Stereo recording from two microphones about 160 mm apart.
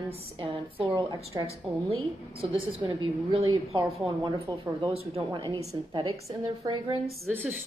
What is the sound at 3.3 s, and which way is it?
Speech, 35° right (ahead or behind).